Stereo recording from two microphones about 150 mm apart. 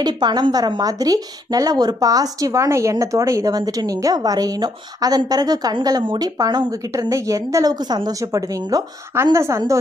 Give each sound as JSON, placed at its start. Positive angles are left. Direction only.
{"t": 0.0, "sound": "a woman's voice", "side_deg": -30}